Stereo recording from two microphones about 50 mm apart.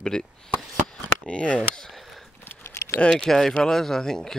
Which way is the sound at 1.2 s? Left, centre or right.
Left.